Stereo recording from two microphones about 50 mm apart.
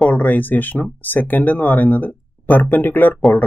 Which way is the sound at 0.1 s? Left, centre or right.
Left.